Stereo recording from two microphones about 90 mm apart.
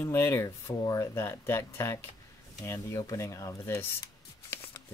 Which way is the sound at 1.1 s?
25° left (ahead or behind).